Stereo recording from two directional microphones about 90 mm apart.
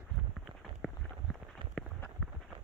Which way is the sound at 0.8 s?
Centre (ahead or behind).